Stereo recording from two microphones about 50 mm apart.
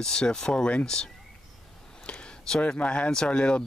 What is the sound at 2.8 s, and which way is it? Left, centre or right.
Speech, left.